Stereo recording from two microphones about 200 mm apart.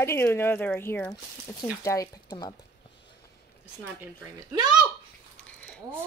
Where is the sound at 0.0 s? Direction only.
10° left (ahead or behind).